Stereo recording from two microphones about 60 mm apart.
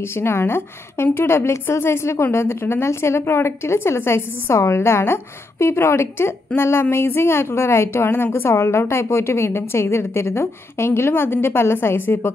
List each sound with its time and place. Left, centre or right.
0.0 s a woman's voice: left